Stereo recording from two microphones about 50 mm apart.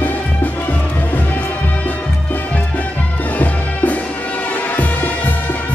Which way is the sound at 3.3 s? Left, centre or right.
Left.